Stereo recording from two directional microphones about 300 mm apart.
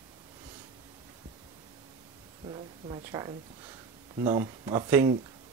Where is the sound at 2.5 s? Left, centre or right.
Centre.